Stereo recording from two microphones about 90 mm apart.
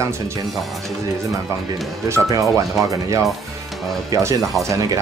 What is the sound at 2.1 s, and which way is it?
Speech, 35° right (ahead or behind).